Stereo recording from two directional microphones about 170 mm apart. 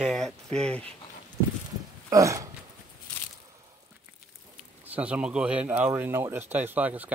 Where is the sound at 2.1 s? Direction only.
20° right (ahead or behind).